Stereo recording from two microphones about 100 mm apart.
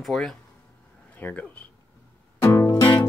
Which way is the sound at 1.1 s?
15° left (ahead or behind).